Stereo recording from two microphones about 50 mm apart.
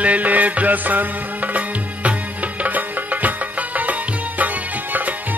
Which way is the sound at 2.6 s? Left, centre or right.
Right.